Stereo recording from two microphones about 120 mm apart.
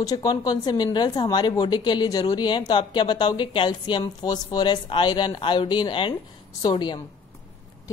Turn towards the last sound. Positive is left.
turn(degrees=40)  # may be behind; listen again after turning